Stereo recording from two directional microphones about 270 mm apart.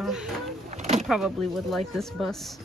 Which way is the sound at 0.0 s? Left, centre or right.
Centre.